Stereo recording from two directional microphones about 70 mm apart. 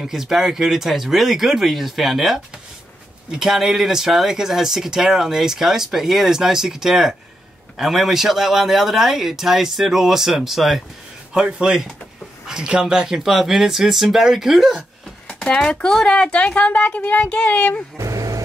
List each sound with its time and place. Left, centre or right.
0.0 s speech: centre
15.4 s speech: centre
17.9 s vehicle: right